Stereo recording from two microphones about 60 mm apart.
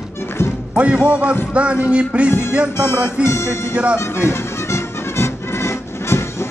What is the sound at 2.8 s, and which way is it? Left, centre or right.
Music, left.